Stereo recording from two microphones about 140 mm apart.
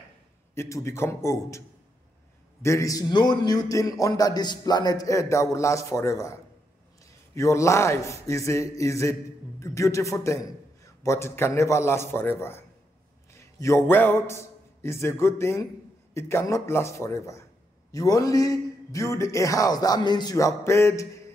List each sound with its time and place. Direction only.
0.6 s a man's voice: 20° left (ahead or behind)
2.6 s a man's voice: 20° left (ahead or behind)
7.3 s a man's voice: 20° left (ahead or behind)